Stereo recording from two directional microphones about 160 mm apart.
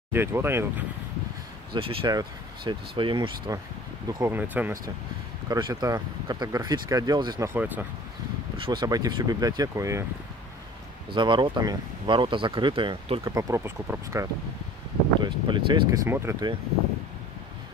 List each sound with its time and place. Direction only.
0.1 s speech: 15° right (ahead or behind)
1.7 s speech: 35° right (ahead or behind); by 4.7 s 10° right (ahead or behind)
5.5 s speech: 20° right (ahead or behind)
7.4 s speech: 10° right (ahead or behind)
8.5 s speech: 30° right (ahead or behind)
11.1 s speech: 30° right (ahead or behind)
13.2 s speech: 20° right (ahead or behind)
15.2 s speech: 30° right (ahead or behind)
16.1 s speech: 15° right (ahead or behind)